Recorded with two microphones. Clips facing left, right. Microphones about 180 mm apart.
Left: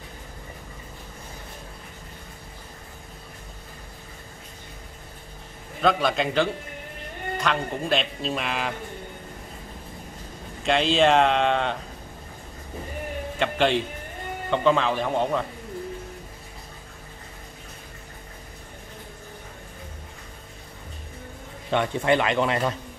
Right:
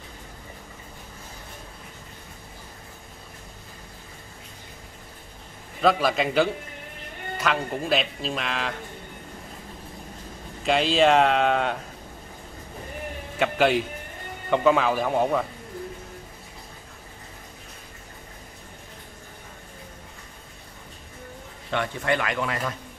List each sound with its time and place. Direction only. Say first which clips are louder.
5.8 s speech: right 1 dB; 5° right (ahead or behind)
10.6 s speech: even; centre (ahead or behind)
13.4 s speech: right 1 dB; 5° right (ahead or behind)
21.6 s speech: left 4 dB; 20° left (ahead or behind)